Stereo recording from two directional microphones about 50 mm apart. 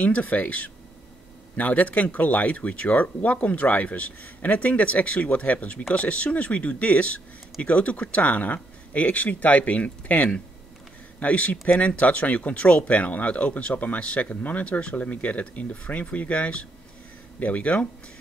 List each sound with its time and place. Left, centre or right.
0.0 s speech: left